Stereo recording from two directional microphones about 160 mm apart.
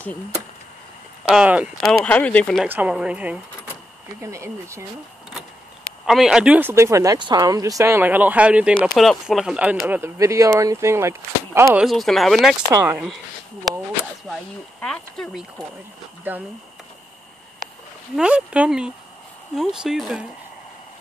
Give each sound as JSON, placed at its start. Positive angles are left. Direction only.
{"t": 1.2, "sound": "speech", "side_deg": -5}
{"t": 1.9, "sound": "speech", "side_deg": 10}
{"t": 2.7, "sound": "speech", "side_deg": -10}
{"t": 6.0, "sound": "speech", "side_deg": 0}
{"t": 11.8, "sound": "speech", "side_deg": 0}
{"t": 12.7, "sound": "speech", "side_deg": -15}
{"t": 14.8, "sound": "speech", "side_deg": 5}
{"t": 16.3, "sound": "speech", "side_deg": -10}
{"t": 18.1, "sound": "speech", "side_deg": -5}